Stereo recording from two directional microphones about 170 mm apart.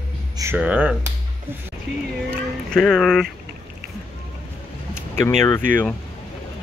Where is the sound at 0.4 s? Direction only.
10° right (ahead or behind).